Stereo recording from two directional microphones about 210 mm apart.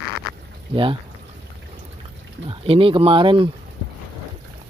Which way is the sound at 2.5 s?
25° right (ahead or behind).